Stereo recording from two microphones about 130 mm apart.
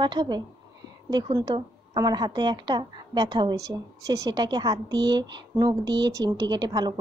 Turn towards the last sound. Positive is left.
turn(degrees=-35)  # may be behind; listen again after turning